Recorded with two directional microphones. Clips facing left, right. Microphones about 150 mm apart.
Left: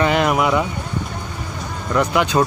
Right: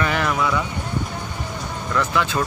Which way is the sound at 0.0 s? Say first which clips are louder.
Left 5 dB; 20° left (ahead or behind).